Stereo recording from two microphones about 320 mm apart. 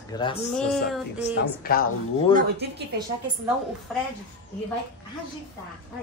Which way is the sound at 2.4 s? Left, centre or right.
Right.